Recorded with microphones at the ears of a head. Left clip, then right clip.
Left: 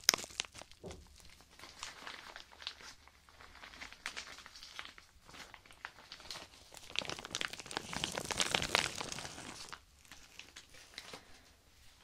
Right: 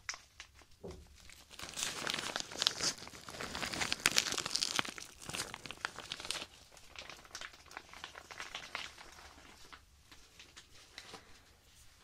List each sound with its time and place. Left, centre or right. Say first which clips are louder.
0.0 s a sound: left 13 dB; left
1.6 s crumpling: right 8 dB; right
6.9 s crumpling: left 10 dB; left